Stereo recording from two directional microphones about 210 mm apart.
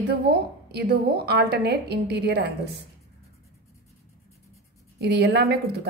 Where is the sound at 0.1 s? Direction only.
50° right (ahead or behind).